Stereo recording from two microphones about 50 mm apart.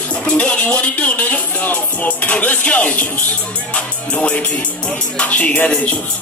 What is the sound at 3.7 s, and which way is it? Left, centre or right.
Music, centre.